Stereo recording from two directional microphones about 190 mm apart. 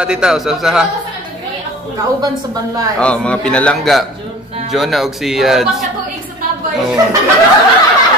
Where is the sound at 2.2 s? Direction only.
20° right (ahead or behind).